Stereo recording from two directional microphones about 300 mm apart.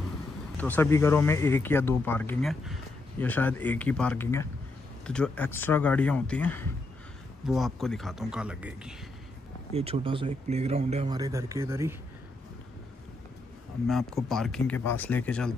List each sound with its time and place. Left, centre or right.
0.6 s speech: centre
9.7 s speech: centre
13.8 s speech: centre